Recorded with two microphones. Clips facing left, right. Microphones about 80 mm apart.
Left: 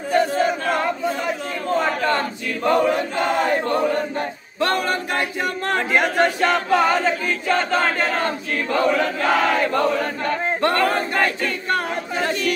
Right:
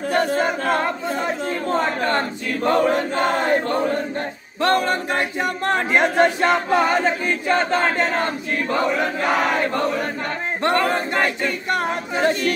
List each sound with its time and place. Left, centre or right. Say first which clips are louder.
0.1 s chant: left 2 dB; right
2.0 s a sound: even; right
4.6 s a capella: right 2 dB; right
5.7 s choir: right 1 dB; right